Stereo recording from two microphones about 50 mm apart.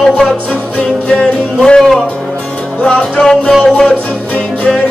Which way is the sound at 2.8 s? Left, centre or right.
Left.